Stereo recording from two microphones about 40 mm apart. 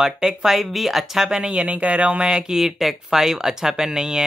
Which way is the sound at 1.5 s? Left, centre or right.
Right.